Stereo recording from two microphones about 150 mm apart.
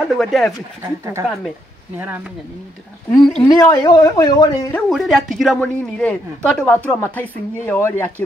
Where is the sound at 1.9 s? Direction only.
15° right (ahead or behind).